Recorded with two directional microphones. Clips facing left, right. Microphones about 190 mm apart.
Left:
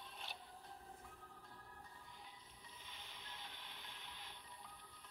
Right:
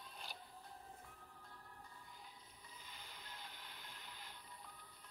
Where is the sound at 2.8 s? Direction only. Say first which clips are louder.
Right 1 dB; centre (ahead or behind).